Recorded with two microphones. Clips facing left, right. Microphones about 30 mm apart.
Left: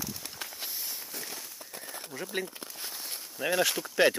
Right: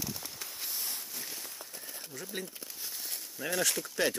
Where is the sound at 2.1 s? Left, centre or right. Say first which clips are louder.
Left 6 dB; left.